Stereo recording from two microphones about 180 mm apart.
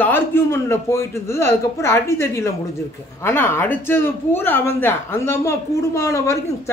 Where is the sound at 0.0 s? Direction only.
10° left (ahead or behind).